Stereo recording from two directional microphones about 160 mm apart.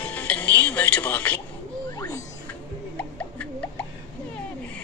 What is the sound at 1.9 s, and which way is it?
Music, 25° left (ahead or behind).